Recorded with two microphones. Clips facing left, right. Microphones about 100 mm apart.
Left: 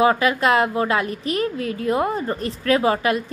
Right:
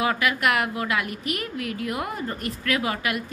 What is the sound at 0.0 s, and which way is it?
A woman's voice, 30° left (ahead or behind).